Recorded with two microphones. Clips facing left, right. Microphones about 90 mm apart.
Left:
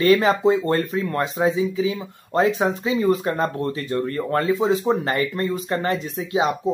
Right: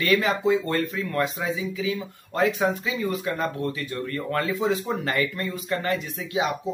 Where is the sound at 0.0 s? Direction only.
35° left (ahead or behind).